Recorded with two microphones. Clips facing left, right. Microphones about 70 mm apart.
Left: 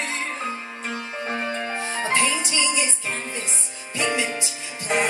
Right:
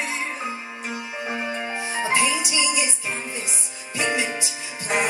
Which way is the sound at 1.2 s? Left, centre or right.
Centre.